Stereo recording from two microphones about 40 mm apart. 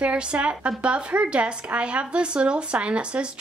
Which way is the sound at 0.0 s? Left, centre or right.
Right.